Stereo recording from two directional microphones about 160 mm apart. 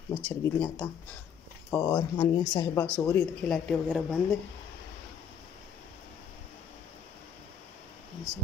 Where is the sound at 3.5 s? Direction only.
5° left (ahead or behind).